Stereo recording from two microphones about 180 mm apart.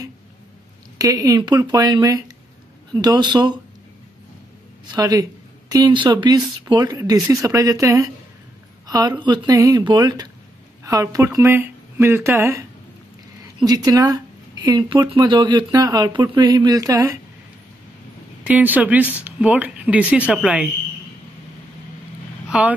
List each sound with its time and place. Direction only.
0.9 s speech: 20° right (ahead or behind)
4.9 s speech: 20° right (ahead or behind)
8.8 s a sound: 20° right (ahead or behind)
9.2 s speech: 20° right (ahead or behind)
18.4 s speech: 10° right (ahead or behind)
22.5 s speech: 5° right (ahead or behind)